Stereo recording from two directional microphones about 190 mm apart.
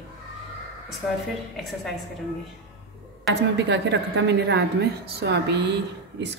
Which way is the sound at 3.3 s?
65° right (ahead or behind).